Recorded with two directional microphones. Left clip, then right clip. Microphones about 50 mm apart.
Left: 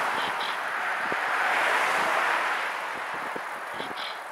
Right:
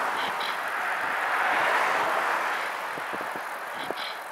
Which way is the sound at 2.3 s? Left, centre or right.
Left.